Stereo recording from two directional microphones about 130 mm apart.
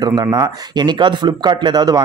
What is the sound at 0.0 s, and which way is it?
A man's voice, 30° right (ahead or behind).